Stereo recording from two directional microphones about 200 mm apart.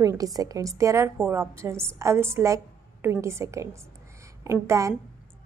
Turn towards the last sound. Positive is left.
turn(degrees=-15)  # may be behind; listen again after turning